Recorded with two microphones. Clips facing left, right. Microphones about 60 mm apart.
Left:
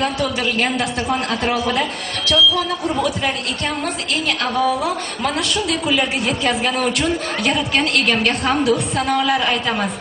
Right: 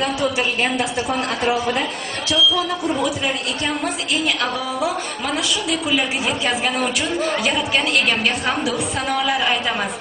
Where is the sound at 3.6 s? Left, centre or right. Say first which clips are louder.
Even; centre.